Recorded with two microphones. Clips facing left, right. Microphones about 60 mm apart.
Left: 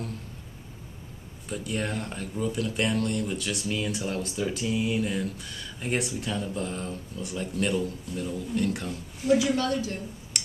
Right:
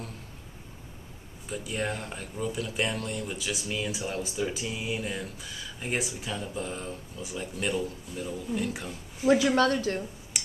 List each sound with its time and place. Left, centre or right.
1.5 s speech: centre
9.4 s a woman's voice: right
10.3 s clicking: centre